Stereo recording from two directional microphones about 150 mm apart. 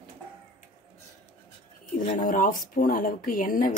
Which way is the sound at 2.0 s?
65° left (ahead or behind).